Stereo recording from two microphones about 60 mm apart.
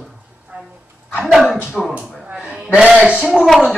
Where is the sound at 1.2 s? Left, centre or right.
Centre.